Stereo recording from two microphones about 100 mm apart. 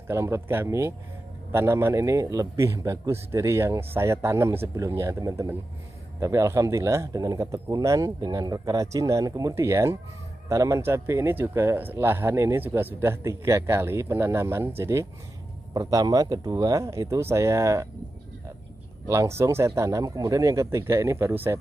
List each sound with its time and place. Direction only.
0.1 s speech: 25° right (ahead or behind)
15.7 s speech: 35° right (ahead or behind)
19.0 s speech: 30° right (ahead or behind)